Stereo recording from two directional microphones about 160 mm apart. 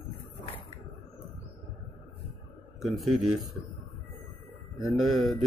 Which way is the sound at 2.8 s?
Centre (ahead or behind).